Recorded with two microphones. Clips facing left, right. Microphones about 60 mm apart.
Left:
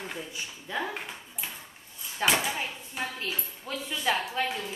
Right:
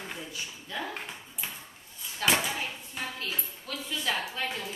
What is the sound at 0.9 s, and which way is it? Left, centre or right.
Ping, centre.